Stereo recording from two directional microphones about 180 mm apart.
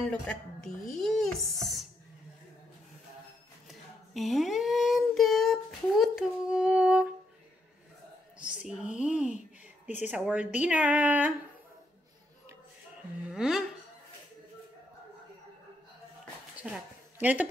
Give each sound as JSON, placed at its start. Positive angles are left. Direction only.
{"t": 0.0, "sound": "dishes", "side_deg": 5}
{"t": 3.6, "sound": "child singing", "side_deg": 0}
{"t": 8.4, "sound": "speech", "side_deg": -5}
{"t": 9.8, "sound": "speech", "side_deg": 40}
{"t": 10.1, "sound": "speech", "side_deg": -5}
{"t": 13.3, "sound": "speech", "side_deg": -5}
{"t": 16.7, "sound": "a sound", "side_deg": -10}